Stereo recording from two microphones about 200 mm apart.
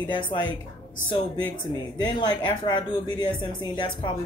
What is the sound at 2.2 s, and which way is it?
A woman's voice, 20° left (ahead or behind).